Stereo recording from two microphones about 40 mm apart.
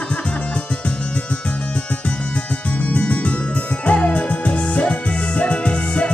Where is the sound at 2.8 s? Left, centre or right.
Left.